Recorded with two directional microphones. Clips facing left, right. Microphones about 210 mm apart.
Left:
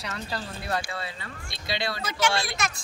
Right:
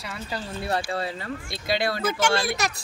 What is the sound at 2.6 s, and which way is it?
Speech, 40° right (ahead or behind).